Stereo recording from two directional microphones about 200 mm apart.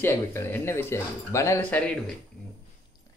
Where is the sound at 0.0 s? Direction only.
15° left (ahead or behind).